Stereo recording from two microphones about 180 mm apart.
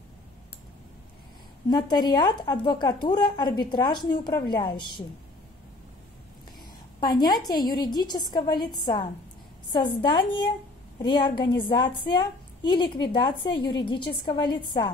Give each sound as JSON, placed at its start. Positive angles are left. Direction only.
{"t": 1.7, "sound": "a woman's voice", "side_deg": 25}
{"t": 7.0, "sound": "a woman's voice", "side_deg": 20}